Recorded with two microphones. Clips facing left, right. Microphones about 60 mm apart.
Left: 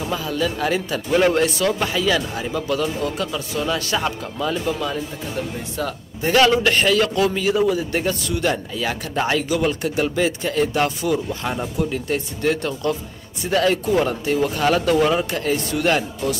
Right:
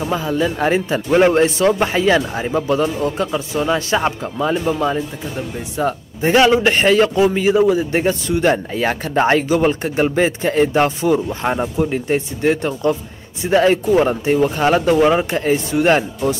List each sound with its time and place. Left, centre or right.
0.0 s a man's voice: right